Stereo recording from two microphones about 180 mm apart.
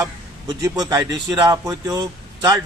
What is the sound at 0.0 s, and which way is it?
A man's voice, 20° right (ahead or behind).